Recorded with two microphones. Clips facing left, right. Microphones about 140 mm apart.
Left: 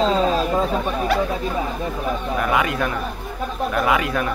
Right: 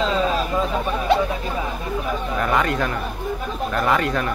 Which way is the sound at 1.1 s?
25° right (ahead or behind).